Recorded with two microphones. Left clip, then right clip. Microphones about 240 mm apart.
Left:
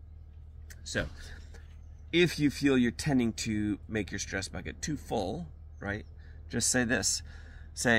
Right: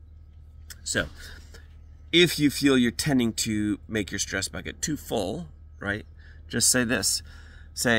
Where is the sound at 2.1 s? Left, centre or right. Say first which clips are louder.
Right 6 dB; right.